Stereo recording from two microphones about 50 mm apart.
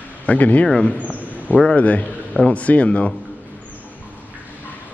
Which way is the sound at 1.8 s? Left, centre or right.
Left.